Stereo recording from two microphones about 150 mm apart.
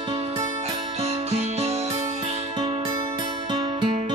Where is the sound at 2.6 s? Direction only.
30° right (ahead or behind).